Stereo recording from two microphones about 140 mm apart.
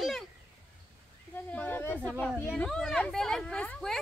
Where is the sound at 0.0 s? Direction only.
Centre (ahead or behind).